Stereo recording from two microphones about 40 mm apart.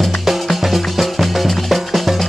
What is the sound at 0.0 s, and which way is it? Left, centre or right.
Music, centre.